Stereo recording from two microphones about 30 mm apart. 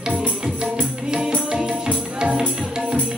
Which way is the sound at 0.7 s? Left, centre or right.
Right.